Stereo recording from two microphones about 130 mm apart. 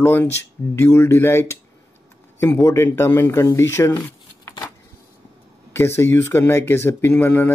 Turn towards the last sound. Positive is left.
turn(degrees=15)  # may be behind; listen again after turning